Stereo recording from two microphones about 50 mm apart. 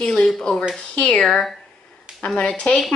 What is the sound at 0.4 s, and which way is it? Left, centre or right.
Speech, centre.